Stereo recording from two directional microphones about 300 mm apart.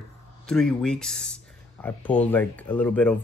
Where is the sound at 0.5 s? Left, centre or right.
Centre.